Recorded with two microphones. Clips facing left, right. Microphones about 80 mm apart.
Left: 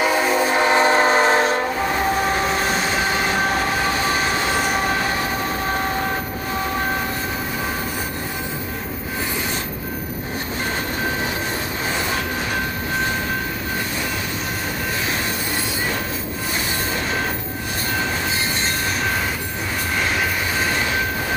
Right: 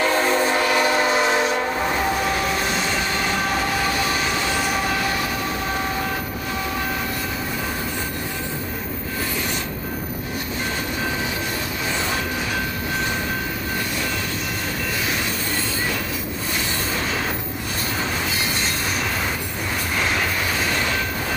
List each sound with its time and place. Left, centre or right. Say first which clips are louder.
0.0 s train: left 1 dB; centre; by 4.9 s left